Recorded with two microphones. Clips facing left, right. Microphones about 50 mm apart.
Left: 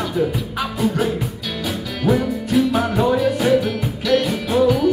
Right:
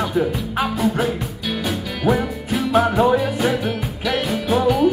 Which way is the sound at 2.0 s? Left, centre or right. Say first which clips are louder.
Left 1 dB; centre.